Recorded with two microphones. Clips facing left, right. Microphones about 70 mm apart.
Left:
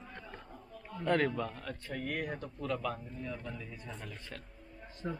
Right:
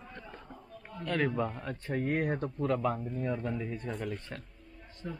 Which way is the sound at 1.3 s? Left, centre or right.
Right.